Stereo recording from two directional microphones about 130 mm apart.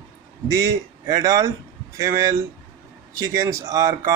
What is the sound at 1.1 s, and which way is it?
Speech, 25° right (ahead or behind).